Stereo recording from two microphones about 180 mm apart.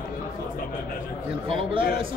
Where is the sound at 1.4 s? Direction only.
30° right (ahead or behind).